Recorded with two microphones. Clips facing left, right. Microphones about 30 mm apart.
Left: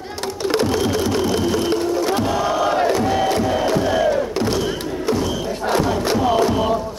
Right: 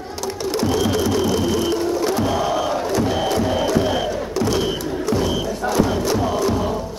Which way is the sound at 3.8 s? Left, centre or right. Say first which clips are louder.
Left 1 dB; centre.